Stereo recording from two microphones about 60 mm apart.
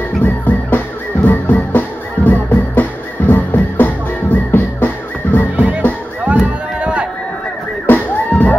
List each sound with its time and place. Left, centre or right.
0.2 s music: left
5.6 s music: right
6.2 s a sound: right
7.8 s music: left